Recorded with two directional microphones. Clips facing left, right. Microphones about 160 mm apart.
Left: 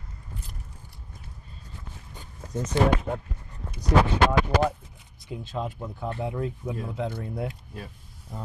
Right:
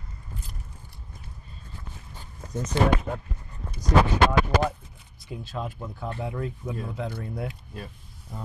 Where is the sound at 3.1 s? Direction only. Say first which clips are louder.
Left 2 dB; 25° left (ahead or behind).